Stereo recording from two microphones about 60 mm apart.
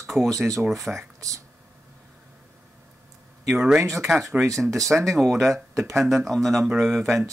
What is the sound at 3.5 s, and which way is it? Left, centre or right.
Speech, centre.